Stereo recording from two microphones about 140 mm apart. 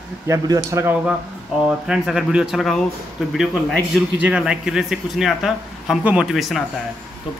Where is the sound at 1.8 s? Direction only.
5° right (ahead or behind).